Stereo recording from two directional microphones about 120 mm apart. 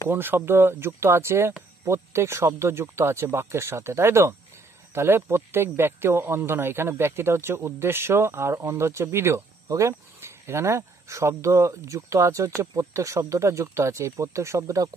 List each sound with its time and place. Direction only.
0.1 s speech: 20° right (ahead or behind)